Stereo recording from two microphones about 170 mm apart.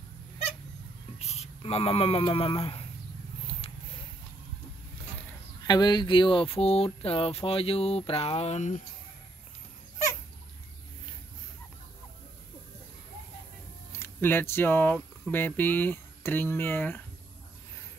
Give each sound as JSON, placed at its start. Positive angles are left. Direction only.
{"t": 1.2, "sound": "speech", "side_deg": 40}
{"t": 5.7, "sound": "speech", "side_deg": 25}
{"t": 13.9, "sound": "speech", "side_deg": 10}